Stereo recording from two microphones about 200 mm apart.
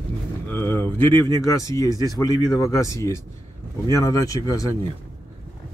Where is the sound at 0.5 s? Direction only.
10° left (ahead or behind).